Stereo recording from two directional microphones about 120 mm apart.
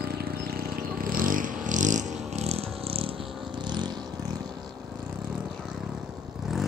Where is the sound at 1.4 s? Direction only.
90° right; by 3.1 s 55° right (ahead or behind).